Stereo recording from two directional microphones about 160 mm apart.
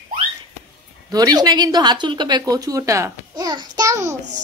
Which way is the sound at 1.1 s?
25° right (ahead or behind).